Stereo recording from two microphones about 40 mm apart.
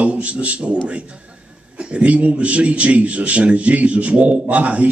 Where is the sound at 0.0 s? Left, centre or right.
Right.